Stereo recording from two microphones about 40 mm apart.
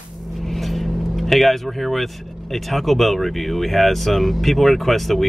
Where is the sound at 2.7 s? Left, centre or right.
Centre.